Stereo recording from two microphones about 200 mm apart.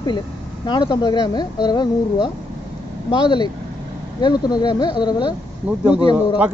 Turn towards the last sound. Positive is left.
turn(degrees=-5)  # may be behind; listen again after turning